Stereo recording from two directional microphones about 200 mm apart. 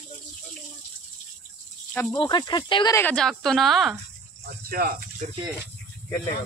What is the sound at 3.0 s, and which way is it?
Speech, 5° left (ahead or behind).